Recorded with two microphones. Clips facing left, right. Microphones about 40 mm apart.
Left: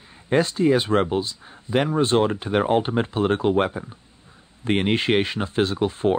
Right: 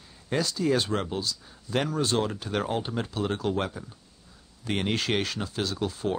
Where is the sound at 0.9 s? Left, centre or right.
Left.